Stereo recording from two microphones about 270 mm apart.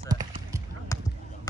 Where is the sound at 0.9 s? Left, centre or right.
Centre.